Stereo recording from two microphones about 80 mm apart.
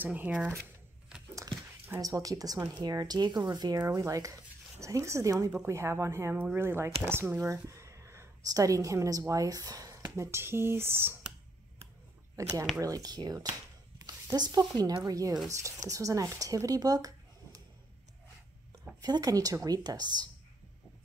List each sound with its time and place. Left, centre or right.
0.0 s speech: right
2.0 s speech: right
3.8 s speech: right
7.4 s a sound: right
8.5 s speech: right
12.4 s a woman's voice: right
15.0 s speech: right
18.9 s a woman's voice: right